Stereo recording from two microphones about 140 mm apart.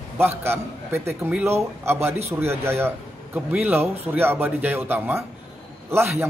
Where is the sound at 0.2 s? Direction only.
15° right (ahead or behind).